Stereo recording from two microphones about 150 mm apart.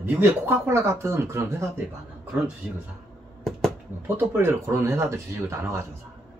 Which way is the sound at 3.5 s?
5° left (ahead or behind).